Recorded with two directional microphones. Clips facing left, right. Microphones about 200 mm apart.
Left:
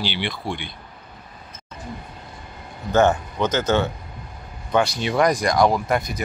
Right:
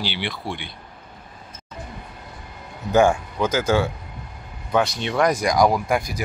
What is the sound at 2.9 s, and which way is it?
Speech, 10° right (ahead or behind).